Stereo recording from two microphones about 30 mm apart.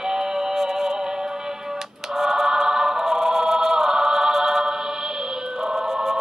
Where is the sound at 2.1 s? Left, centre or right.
Centre.